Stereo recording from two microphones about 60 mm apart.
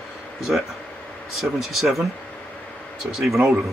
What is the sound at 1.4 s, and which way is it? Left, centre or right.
Speech, centre.